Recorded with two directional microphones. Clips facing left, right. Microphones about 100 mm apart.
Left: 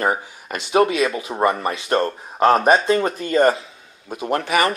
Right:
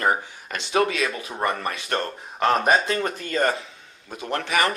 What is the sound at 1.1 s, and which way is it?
Speech, 30° left (ahead or behind).